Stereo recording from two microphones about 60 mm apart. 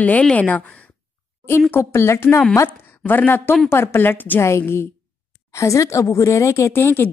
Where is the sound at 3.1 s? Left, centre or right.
Left.